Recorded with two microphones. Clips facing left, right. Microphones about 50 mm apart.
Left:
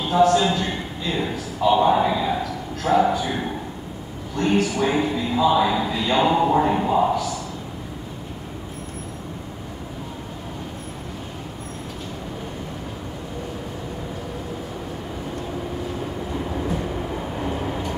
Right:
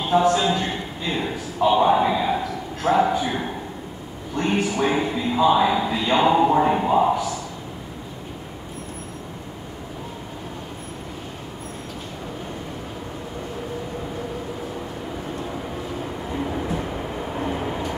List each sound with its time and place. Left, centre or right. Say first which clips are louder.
0.1 s a man's voice: left 1 dB; right
1.9 s a man's voice: even; centre
4.4 s a man's voice: left 1 dB; right
4.9 s speech: even; centre
16.5 s train: even; centre
17.4 s vehicle: right 2 dB; centre